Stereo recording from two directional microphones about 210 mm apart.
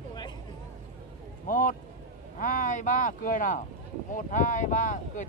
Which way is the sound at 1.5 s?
40° left (ahead or behind).